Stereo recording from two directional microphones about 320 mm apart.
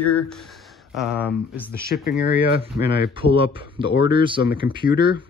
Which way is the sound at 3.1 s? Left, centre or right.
Centre.